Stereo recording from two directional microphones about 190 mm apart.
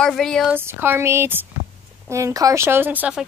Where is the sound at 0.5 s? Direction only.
10° right (ahead or behind).